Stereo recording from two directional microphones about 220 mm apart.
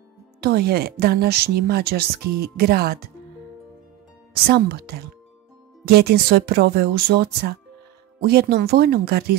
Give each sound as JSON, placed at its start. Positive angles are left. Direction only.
{"t": 0.4, "sound": "speech", "side_deg": -45}
{"t": 4.5, "sound": "speech", "side_deg": -45}